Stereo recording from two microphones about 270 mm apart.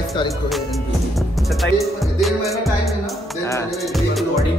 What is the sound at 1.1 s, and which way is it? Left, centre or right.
Music, centre.